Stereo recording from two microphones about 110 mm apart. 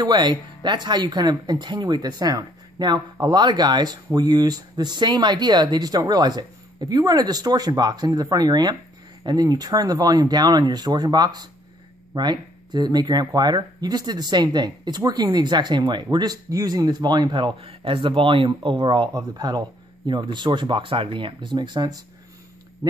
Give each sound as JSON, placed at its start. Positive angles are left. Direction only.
{"t": 0.0, "sound": "speech", "side_deg": -45}